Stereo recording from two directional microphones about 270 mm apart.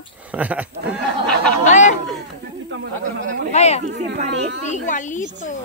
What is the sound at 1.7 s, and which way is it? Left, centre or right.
Speech, left.